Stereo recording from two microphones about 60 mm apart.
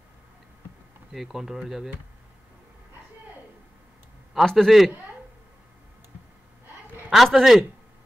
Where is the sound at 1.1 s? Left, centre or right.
Centre.